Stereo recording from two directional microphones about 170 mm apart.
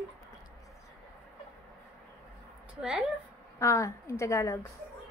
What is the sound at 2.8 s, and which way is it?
Speech, 5° right (ahead or behind).